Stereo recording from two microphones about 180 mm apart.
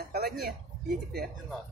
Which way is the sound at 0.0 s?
60° right (ahead or behind).